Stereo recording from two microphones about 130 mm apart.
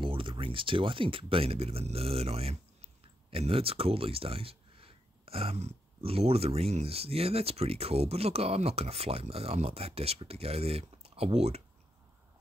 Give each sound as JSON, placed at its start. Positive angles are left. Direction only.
{"t": 0.0, "sound": "speech", "side_deg": -40}